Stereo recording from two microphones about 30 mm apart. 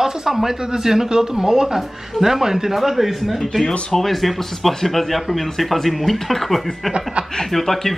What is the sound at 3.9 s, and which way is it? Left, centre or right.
A man's voice, centre.